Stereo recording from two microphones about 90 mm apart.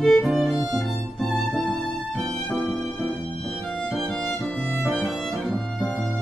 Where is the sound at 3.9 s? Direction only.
5° left (ahead or behind).